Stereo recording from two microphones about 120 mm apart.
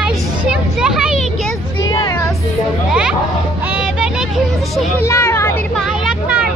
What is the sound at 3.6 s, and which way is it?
Vehicle, 10° right (ahead or behind).